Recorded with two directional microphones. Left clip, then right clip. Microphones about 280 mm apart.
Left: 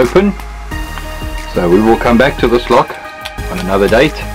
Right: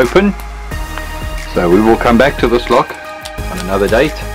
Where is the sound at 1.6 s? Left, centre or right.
Centre.